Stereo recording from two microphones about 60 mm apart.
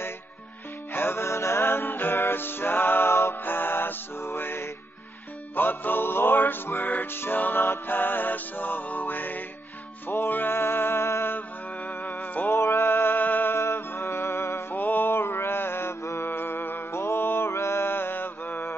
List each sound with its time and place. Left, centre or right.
0.9 s music: left
11.3 s music: left
12.5 s music: left
14.8 s mantra: left
16.3 s mantra: left